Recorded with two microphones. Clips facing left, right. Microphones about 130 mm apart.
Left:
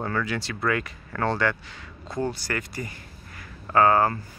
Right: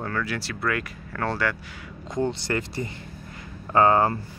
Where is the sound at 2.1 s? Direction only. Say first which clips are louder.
Right 3 dB; 20° right (ahead or behind).